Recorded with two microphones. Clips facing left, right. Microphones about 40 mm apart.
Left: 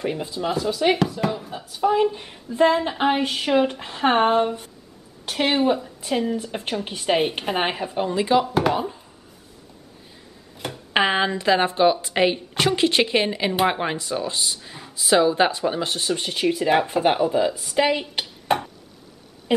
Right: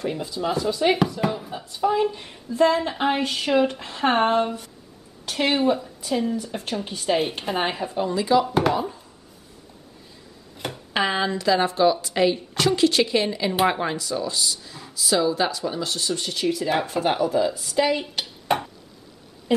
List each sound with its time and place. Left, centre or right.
0.3 s speech: centre
2.5 s speech: centre
6.4 s speech: left
8.5 s speech: centre
10.9 s speech: left
18.2 s a sound: centre